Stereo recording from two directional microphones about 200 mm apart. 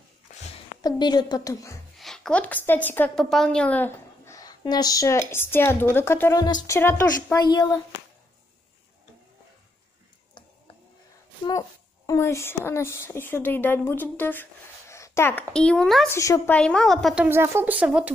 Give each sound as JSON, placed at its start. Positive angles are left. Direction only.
{"t": 0.8, "sound": "a woman's voice", "side_deg": 20}
{"t": 2.0, "sound": "a woman's voice", "side_deg": 0}
{"t": 12.1, "sound": "speech", "side_deg": 15}
{"t": 16.1, "sound": "a woman's voice", "side_deg": 15}